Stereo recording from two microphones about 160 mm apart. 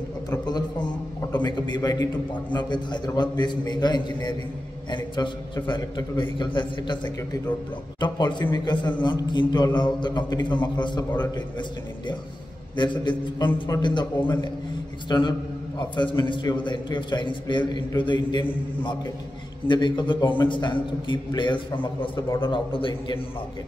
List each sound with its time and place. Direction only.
0.3 s a man's voice: 25° left (ahead or behind)
8.0 s a man's voice: 30° left (ahead or behind)
12.7 s a man's voice: 30° left (ahead or behind)